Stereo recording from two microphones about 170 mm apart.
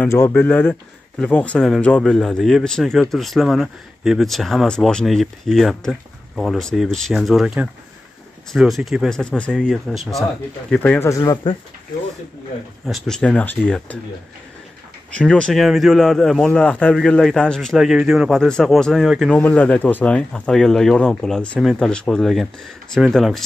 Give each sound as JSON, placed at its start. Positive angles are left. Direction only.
{"t": 0.0, "sound": "speech", "side_deg": 10}
{"t": 11.1, "sound": "speech", "side_deg": 20}
{"t": 12.8, "sound": "speech", "side_deg": 0}
{"t": 15.0, "sound": "speech", "side_deg": 5}